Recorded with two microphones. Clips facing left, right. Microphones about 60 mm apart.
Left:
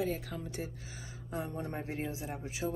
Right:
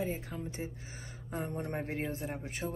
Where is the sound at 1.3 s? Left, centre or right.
Right.